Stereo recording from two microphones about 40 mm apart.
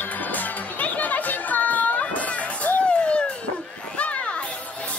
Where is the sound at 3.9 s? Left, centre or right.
Left.